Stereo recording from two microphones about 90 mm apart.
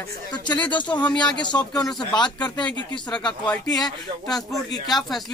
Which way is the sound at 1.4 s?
50° left (ahead or behind).